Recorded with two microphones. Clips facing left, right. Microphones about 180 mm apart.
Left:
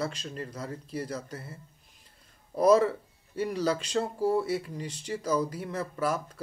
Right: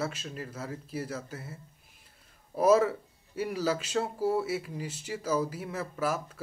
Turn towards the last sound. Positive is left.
turn(degrees=-5)  # may be behind; listen again after turning